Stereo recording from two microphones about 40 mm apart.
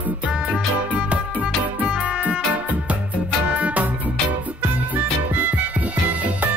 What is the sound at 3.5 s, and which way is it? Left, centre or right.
Music, right.